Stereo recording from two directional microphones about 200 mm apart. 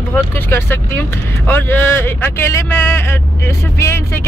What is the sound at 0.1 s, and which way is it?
Speech, 10° left (ahead or behind).